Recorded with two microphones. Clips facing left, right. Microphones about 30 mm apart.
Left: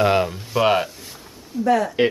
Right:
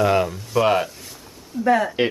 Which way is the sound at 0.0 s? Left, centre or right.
Left.